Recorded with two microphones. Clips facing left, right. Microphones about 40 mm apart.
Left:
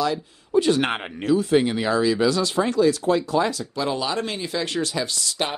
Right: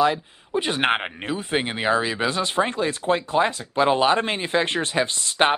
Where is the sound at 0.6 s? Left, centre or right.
Right.